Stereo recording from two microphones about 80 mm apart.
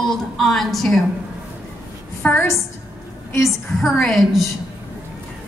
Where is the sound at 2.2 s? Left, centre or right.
Left.